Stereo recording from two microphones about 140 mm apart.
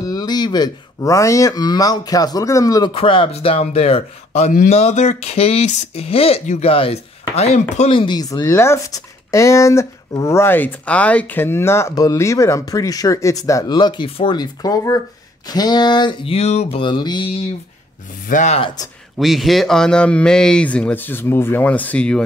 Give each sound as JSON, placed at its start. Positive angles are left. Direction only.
{"t": 0.0, "sound": "speech", "side_deg": 25}
{"t": 2.9, "sound": "speech", "side_deg": 40}
{"t": 4.5, "sound": "speech", "side_deg": 75}
{"t": 4.7, "sound": "speech", "side_deg": 55}
{"t": 6.4, "sound": "speech", "side_deg": 60}
{"t": 6.7, "sound": "chopping", "side_deg": 45}
{"t": 7.7, "sound": "speech", "side_deg": 45}
{"t": 15.4, "sound": "a sound", "side_deg": 30}
{"t": 18.3, "sound": "speech", "side_deg": 60}
{"t": 19.1, "sound": "speech", "side_deg": 0}